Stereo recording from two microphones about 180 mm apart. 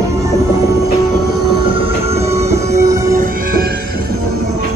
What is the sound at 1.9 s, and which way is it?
Music, 35° right (ahead or behind).